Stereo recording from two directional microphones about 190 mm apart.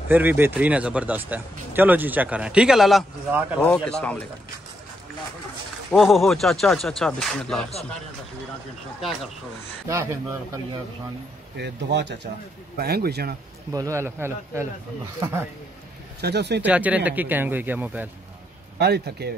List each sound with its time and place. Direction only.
0.1 s speech: 10° right (ahead or behind); by 4.3 s 5° left (ahead or behind)
5.9 s speech: centre (ahead or behind)
11.5 s speech: 65° right (ahead or behind)
13.7 s speech: 15° right (ahead or behind)
16.2 s speech: 60° right (ahead or behind)
16.6 s speech: 5° right (ahead or behind)
18.8 s speech: 60° right (ahead or behind)